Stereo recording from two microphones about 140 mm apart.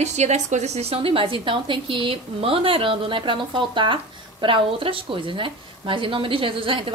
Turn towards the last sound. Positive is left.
turn(degrees=-40)  # may be behind; listen again after turning